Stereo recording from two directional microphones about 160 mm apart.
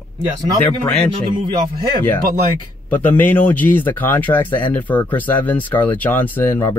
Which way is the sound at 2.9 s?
10° left (ahead or behind).